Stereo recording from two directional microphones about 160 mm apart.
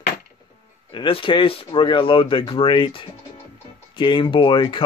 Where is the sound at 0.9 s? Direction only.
30° left (ahead or behind).